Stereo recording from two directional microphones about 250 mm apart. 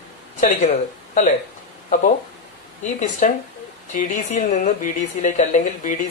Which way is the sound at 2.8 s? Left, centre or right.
Left.